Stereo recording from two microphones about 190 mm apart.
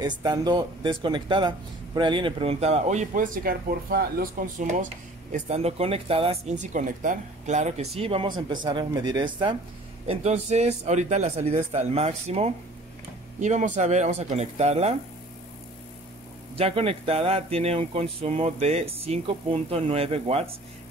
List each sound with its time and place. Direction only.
0.0 s speech: 20° right (ahead or behind); by 4.8 s 45° right (ahead or behind)
5.3 s speech: 35° right (ahead or behind)
10.0 s speech: 35° right (ahead or behind)
16.5 s speech: 30° right (ahead or behind)